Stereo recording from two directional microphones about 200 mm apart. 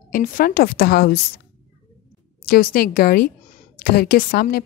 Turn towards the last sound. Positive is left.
turn(degrees=50)  # may be behind; listen again after turning